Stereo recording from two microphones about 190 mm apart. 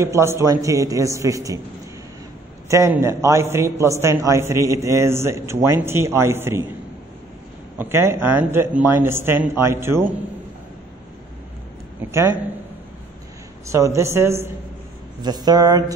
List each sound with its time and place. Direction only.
0.0 s a man's voice: 15° right (ahead or behind)
2.7 s a man's voice: 15° right (ahead or behind)
7.8 s a man's voice: 10° right (ahead or behind)
12.0 s a man's voice: 15° right (ahead or behind)
13.7 s a man's voice: 15° right (ahead or behind)